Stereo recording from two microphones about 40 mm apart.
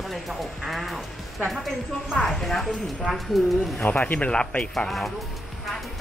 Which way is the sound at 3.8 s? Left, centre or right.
Left.